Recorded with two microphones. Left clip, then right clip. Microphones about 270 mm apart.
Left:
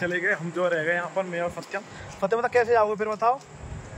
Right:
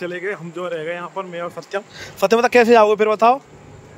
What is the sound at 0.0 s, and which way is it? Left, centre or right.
Speech, centre.